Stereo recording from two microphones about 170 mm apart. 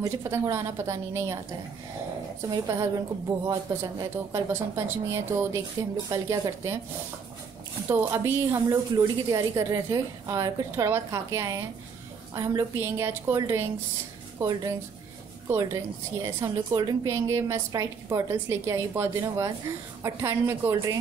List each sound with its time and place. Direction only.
0.0 s a woman's voice: 15° right (ahead or behind)
2.5 s a woman's voice: 20° right (ahead or behind)
7.9 s a woman's voice: 15° right (ahead or behind)